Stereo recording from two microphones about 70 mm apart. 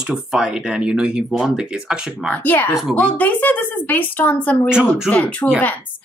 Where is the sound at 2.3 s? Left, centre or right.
Left.